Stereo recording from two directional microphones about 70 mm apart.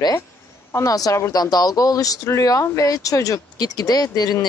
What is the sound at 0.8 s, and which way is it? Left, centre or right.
Speech, left.